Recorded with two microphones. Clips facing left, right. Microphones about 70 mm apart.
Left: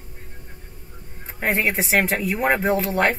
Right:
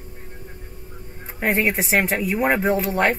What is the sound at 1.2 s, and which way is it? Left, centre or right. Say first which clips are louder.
Music: right 1 dB; centre.